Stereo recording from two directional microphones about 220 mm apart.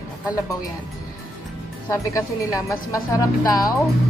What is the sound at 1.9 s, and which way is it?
Speech, 15° left (ahead or behind).